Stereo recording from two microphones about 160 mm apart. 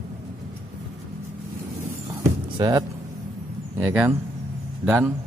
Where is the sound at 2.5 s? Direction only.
25° right (ahead or behind).